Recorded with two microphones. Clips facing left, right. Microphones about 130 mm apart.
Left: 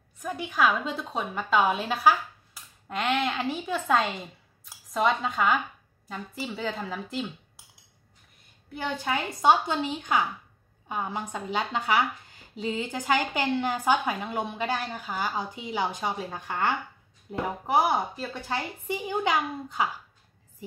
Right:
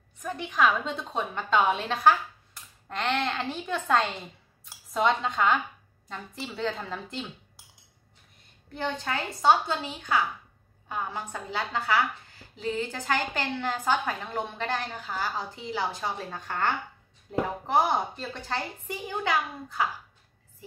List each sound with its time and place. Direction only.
0.2 s a woman's voice: 5° left (ahead or behind)
8.7 s a woman's voice: 10° left (ahead or behind)